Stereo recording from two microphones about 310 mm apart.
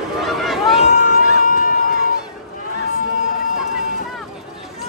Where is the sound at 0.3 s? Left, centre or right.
Centre.